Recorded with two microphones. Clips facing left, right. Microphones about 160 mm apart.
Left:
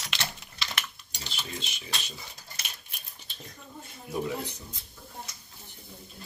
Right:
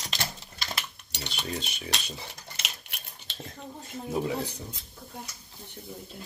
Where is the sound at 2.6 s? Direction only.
80° right.